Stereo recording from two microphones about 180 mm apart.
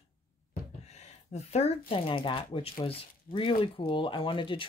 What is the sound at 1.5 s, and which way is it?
Speech, 35° left (ahead or behind).